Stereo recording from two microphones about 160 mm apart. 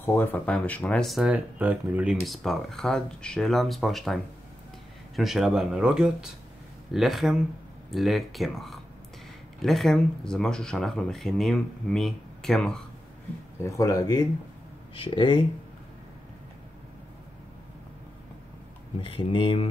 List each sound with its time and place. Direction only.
0.0 s speech: 15° left (ahead or behind)
13.6 s speech: 20° left (ahead or behind)
18.9 s speech: 35° left (ahead or behind)